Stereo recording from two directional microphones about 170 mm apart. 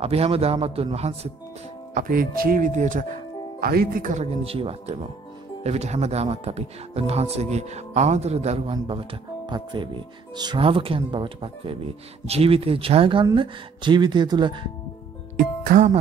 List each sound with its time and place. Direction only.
0.0 s speech: 35° right (ahead or behind)
2.0 s a man's voice: 55° right (ahead or behind)
3.6 s a man's voice: 60° right (ahead or behind); by 14.7 s 25° right (ahead or behind)
15.3 s speech: 50° right (ahead or behind)